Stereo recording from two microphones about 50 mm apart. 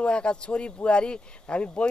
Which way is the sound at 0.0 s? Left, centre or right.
Centre.